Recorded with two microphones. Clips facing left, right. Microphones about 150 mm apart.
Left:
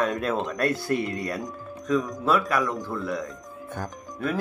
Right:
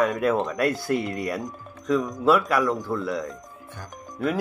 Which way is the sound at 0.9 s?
20° right (ahead or behind).